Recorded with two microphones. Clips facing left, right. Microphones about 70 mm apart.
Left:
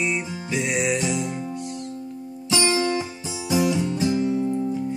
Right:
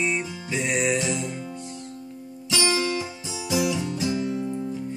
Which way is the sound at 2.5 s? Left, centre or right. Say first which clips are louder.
Left 3 dB; left.